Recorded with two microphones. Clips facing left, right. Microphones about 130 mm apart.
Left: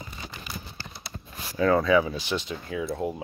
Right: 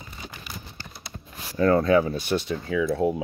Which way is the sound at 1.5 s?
45° right (ahead or behind).